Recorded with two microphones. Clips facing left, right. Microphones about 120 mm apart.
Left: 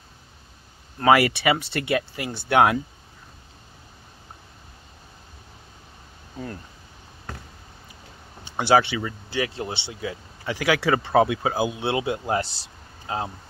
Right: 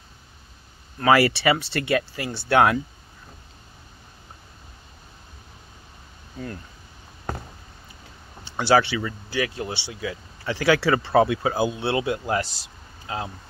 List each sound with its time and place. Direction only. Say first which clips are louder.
0.9 s speech: even; 20° left (ahead or behind)
8.5 s speech: even; 15° left (ahead or behind)